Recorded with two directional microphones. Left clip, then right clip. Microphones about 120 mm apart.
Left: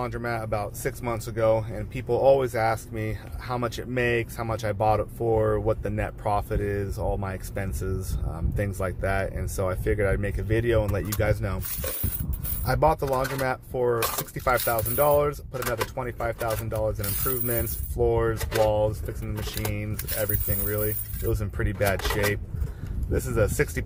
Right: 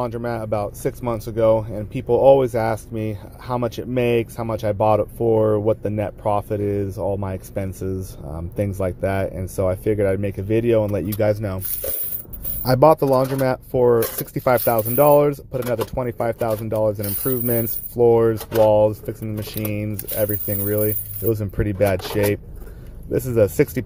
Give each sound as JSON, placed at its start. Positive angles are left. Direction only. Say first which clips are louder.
{"t": 0.0, "sound": "speech", "louder": "right 5 dB", "side_deg": -40}
{"t": 12.6, "sound": "speech", "louder": "right 9 dB", "side_deg": -70}
{"t": 20.2, "sound": "speech", "louder": "right 8 dB", "side_deg": -45}